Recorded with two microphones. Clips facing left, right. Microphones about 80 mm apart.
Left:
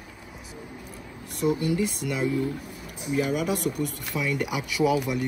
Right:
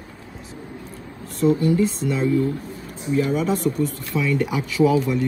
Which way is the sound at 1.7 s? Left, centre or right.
Left.